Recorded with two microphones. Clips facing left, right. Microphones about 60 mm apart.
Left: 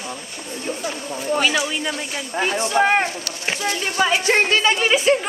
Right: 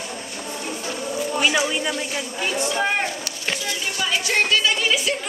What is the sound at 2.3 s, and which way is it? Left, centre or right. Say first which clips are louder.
Speech: left 6 dB; left.